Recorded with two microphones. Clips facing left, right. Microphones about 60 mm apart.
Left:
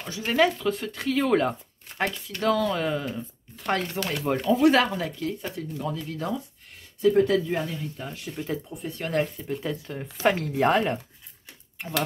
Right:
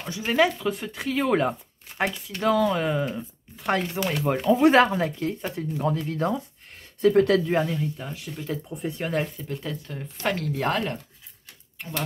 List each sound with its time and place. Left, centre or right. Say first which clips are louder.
0.1 s speech: even; centre
4.5 s speech: right 3 dB; right
7.0 s speech: right 2 dB; right
7.7 s speech: right 4 dB; centre
8.8 s speech: right 7 dB; centre
9.1 s speech: left 1 dB; centre